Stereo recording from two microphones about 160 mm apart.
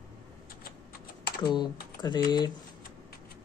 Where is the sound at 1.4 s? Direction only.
30° left (ahead or behind).